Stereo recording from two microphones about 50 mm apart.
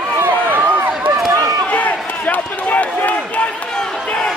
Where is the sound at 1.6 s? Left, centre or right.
Left.